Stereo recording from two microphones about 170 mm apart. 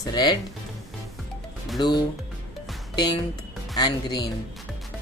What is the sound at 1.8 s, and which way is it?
Speech, 25° left (ahead or behind).